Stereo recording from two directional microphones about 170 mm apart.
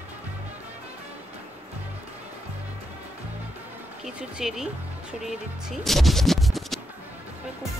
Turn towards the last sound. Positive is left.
turn(degrees=0)  # may be behind; listen again after turning